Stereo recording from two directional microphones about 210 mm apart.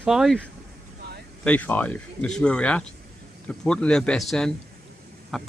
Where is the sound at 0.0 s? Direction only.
Centre (ahead or behind).